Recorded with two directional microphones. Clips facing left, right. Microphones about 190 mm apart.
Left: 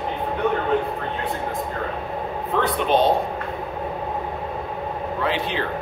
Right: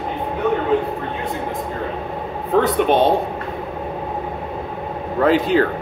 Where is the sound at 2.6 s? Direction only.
55° right (ahead or behind).